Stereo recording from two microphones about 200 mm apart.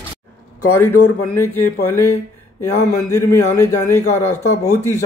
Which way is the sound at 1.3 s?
10° left (ahead or behind).